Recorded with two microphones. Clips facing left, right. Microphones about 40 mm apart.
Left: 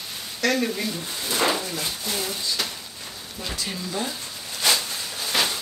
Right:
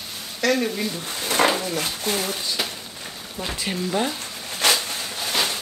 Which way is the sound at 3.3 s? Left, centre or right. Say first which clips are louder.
Right 4 dB; right.